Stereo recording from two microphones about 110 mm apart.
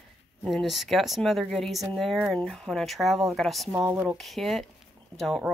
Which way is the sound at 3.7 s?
15° right (ahead or behind).